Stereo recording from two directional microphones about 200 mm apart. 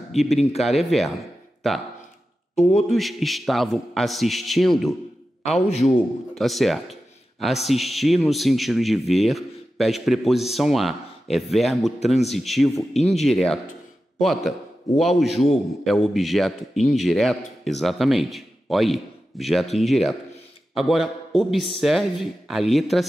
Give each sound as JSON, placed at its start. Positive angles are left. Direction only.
{"t": 0.1, "sound": "a man's voice", "side_deg": 0}
{"t": 0.4, "sound": "a man's voice", "side_deg": 30}
{"t": 0.7, "sound": "a man's voice", "side_deg": 0}